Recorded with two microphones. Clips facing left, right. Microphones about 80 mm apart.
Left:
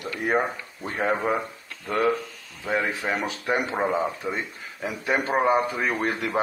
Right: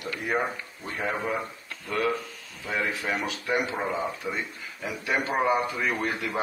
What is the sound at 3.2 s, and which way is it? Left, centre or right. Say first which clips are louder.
Speech: left 2 dB; left.